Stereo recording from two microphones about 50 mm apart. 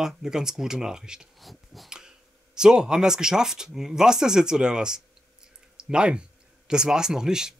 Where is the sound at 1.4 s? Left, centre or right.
Centre.